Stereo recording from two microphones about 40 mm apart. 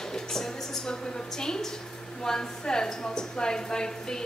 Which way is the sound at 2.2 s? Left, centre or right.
Centre.